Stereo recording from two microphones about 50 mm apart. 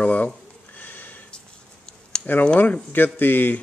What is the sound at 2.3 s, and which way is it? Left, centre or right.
Speech, left.